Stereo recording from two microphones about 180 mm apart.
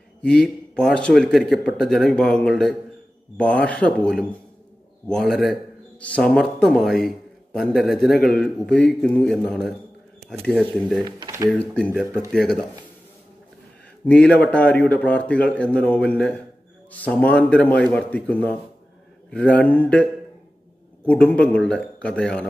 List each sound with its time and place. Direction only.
0.2 s a man's voice: 5° left (ahead or behind)
11.1 s speech: 20° right (ahead or behind)
11.5 s a man's voice: 5° left (ahead or behind)
14.0 s speech: 5° left (ahead or behind)